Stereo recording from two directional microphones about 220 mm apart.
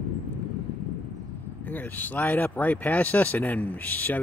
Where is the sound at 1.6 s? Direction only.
10° left (ahead or behind).